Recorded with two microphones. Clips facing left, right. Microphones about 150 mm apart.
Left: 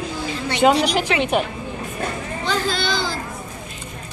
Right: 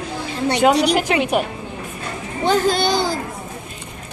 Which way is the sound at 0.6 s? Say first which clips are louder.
Even; centre (ahead or behind).